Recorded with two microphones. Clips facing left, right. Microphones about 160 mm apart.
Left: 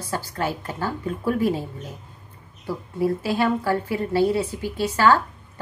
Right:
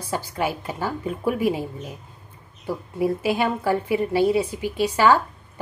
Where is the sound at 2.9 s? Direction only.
15° right (ahead or behind).